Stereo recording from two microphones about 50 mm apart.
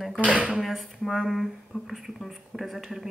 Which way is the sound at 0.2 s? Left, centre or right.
Right.